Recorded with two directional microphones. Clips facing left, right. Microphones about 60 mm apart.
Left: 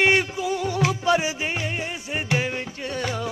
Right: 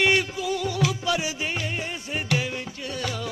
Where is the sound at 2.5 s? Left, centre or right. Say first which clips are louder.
Left 3 dB; left.